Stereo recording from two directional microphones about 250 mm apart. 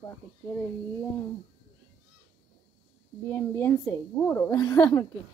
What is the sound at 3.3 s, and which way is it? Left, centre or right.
A woman's voice, centre.